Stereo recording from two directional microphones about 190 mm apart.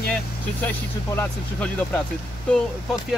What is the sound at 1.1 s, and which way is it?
Speech, 10° left (ahead or behind).